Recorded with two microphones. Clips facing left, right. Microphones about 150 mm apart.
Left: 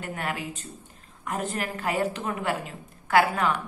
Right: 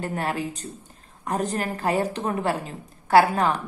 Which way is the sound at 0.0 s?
35° right (ahead or behind).